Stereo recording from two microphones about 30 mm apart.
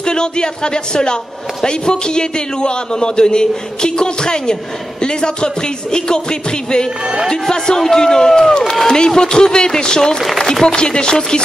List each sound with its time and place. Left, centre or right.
0.0 s speech: left
7.2 s speech: left